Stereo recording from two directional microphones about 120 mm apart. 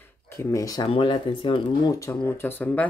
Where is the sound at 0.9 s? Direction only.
45° left (ahead or behind).